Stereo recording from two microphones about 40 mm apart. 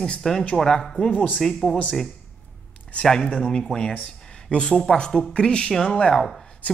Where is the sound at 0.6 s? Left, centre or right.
Centre.